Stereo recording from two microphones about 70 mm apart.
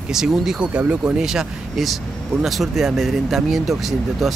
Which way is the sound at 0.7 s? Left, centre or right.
Centre.